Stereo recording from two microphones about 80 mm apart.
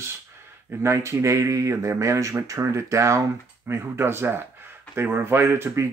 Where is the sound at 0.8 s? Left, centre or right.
Right.